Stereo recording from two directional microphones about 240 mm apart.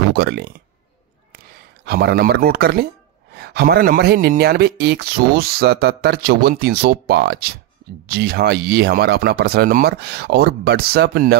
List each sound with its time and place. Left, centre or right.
0.1 s speech: right
1.9 s speech: right